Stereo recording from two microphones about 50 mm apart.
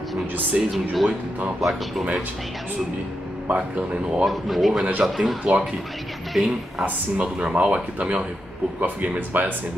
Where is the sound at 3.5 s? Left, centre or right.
Right.